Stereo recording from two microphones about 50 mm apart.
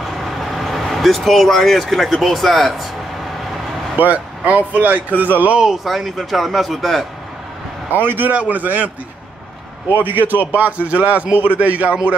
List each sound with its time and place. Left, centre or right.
0.2 s vehicle: centre
2.2 s a man's voice: centre
3.9 s speech: right
5.9 s a man's voice: centre
7.9 s a man's voice: right